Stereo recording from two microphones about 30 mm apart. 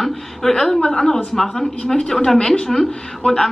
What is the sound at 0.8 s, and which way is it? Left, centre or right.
Speech, left.